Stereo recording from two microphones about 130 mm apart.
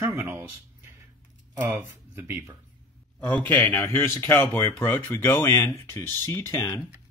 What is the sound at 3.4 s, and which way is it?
Speech, 15° left (ahead or behind).